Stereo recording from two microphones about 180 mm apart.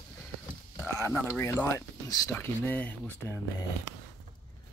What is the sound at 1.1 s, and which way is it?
Speech, 10° left (ahead or behind).